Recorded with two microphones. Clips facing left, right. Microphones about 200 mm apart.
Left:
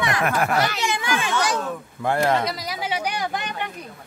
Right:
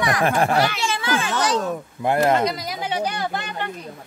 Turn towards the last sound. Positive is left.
turn(degrees=15)  # may be behind; listen again after turning